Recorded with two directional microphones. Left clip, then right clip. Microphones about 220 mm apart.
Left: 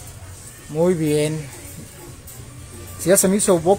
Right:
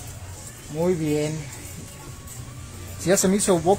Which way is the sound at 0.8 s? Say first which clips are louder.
Left 5 dB; 30° left (ahead or behind).